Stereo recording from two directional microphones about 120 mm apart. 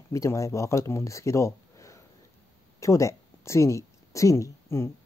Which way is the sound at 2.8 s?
25° left (ahead or behind).